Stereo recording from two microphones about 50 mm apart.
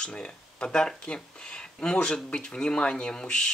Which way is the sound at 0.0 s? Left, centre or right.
Centre.